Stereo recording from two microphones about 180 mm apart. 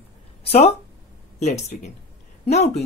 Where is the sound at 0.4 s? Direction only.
35° left (ahead or behind).